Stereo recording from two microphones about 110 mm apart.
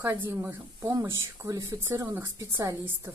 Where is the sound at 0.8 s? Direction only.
30° right (ahead or behind).